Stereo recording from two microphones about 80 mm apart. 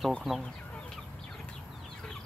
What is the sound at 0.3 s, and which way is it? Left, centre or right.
Speech, centre.